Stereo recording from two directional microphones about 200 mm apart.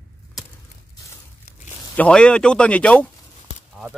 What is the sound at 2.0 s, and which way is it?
Speech, 5° left (ahead or behind).